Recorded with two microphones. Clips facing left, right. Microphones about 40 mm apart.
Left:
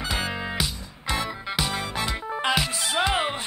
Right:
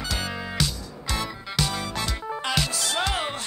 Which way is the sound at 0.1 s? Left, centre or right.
Left.